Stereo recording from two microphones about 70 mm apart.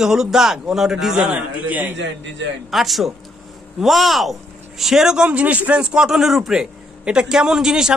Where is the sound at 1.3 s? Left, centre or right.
Centre.